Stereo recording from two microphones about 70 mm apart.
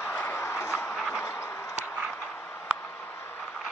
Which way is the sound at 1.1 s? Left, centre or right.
Left.